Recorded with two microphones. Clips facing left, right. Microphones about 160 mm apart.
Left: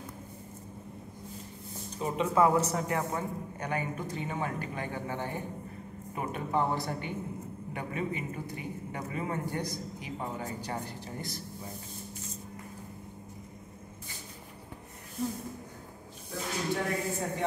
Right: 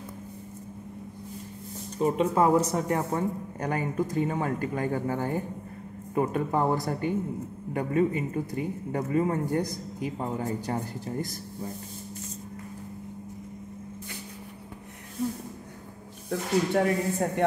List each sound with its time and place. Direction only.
2.0 s a man's voice: 40° right (ahead or behind)
16.3 s speech: 60° right (ahead or behind)